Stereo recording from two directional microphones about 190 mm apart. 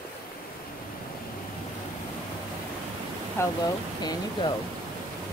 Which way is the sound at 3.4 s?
15° left (ahead or behind).